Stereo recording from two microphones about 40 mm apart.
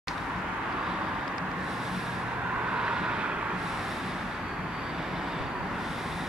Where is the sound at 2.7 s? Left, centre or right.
Right.